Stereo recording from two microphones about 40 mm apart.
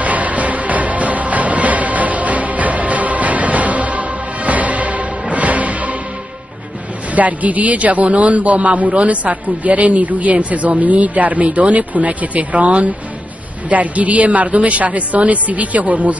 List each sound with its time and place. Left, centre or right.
0.0 s music: right
7.2 s a man's voice: right